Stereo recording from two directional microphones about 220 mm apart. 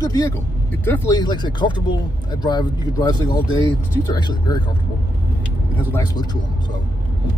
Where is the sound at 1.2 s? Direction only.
20° left (ahead or behind).